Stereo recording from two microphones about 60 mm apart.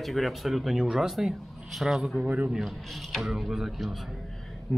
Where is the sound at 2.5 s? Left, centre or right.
Centre.